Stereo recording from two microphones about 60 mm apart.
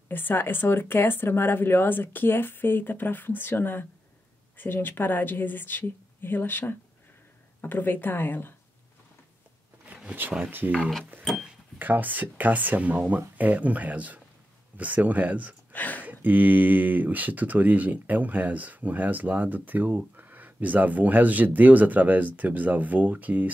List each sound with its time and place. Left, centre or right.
0.1 s speech: left
10.4 s speech: right
11.8 s speech: right
15.7 s speech: left
16.1 s speech: right